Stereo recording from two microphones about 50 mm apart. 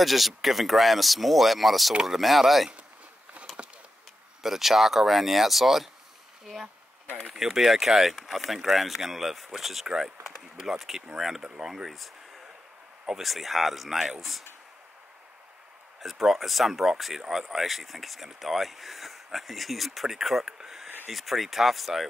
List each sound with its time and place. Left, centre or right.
0.0 s speech: centre
3.4 s a sound: right
4.4 s speech: centre
11.4 s speech: centre
11.7 s speech: centre
16.0 s speech: centre
20.5 s a sound: centre
21.1 s speech: centre